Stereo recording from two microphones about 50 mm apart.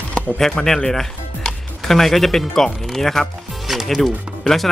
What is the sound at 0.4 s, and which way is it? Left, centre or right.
Speech, centre.